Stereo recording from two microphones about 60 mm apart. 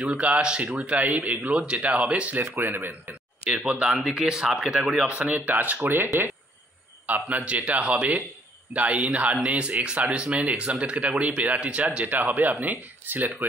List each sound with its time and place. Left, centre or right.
0.1 s speech: centre
2.5 s speech: right
2.9 s speech: right; by 5.0 s centre
5.0 s speech: right
7.2 s speech: right